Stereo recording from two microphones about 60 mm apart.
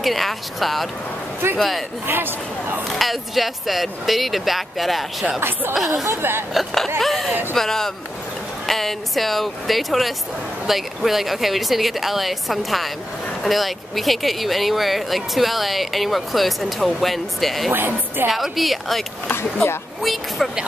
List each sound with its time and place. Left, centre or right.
0.0 s a woman's voice: centre
2.0 s speech: right
2.9 s a woman's voice: centre
5.4 s speech: right
6.5 s a woman's voice: centre
17.7 s speech: right
18.3 s a woman's voice: centre
19.2 s speech: left
20.0 s a woman's voice: centre